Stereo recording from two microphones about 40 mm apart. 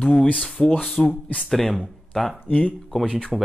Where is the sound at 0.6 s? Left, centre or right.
Centre.